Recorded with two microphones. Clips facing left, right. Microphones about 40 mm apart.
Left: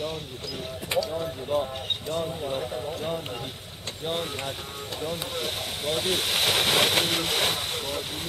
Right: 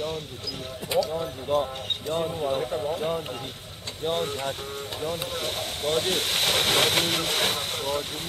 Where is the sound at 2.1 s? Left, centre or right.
Right.